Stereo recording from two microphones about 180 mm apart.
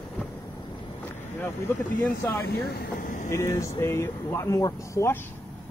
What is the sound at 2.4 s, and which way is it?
Speech, 60° left (ahead or behind).